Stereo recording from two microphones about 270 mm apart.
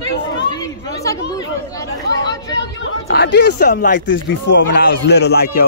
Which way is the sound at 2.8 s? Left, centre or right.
Left.